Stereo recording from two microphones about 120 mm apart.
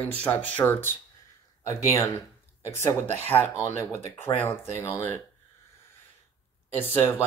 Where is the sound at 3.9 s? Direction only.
20° left (ahead or behind).